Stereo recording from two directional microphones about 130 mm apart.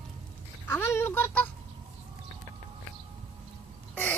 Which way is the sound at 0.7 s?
20° left (ahead or behind).